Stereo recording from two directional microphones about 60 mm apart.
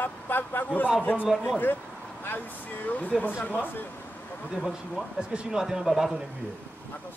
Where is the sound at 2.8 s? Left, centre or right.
Left.